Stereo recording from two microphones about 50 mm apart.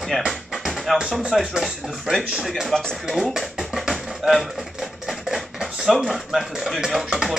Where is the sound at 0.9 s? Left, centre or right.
Centre.